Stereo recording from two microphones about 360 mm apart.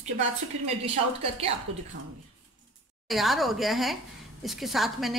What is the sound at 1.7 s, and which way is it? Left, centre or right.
Speech, right.